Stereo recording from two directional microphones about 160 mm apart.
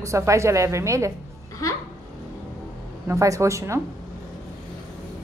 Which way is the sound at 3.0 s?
20° right (ahead or behind).